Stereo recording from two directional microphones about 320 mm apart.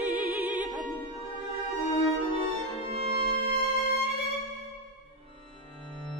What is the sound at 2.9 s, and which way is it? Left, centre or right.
Music, centre.